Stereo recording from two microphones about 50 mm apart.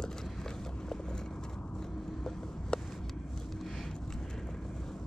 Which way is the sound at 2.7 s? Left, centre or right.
Centre.